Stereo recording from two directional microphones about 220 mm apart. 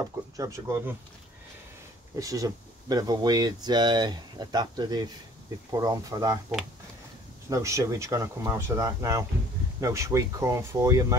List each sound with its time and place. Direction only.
0.4 s speech: 15° right (ahead or behind)
2.1 s speech: 15° right (ahead or behind)
7.4 s speech: 15° right (ahead or behind)